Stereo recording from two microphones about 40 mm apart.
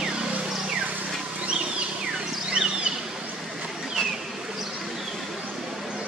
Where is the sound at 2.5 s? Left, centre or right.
Right.